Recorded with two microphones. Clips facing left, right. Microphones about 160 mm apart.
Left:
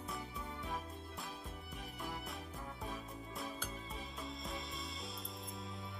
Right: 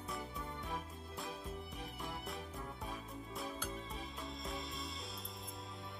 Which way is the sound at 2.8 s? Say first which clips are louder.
Even; centre (ahead or behind).